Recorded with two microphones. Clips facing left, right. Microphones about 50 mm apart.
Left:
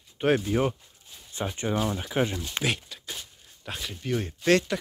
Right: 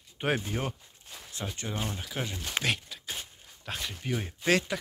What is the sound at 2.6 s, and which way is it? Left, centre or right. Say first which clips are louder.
Speech: left 4 dB; centre.